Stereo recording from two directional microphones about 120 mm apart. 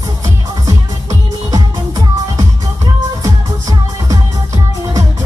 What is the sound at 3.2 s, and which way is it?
Music, 30° right (ahead or behind).